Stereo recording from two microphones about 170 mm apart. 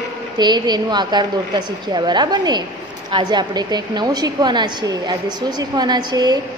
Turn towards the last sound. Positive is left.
turn(degrees=-25)  # may be behind; listen again after turning